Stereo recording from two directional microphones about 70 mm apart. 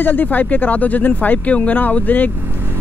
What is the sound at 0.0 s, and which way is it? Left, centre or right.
Speech, left.